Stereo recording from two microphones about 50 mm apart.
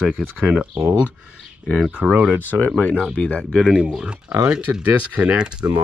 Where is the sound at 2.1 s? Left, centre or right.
Right.